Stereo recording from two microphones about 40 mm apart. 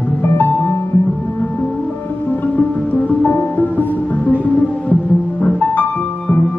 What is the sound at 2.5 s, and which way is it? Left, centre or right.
Music, left.